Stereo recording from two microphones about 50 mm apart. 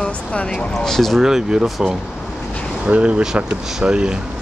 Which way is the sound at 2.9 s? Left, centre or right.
Right.